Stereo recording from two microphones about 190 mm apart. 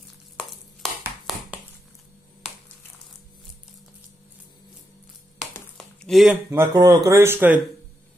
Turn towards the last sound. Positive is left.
turn(degrees=-10)  # may be behind; listen again after turning